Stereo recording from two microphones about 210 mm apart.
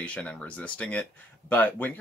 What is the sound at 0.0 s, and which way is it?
Speech, 5° left (ahead or behind).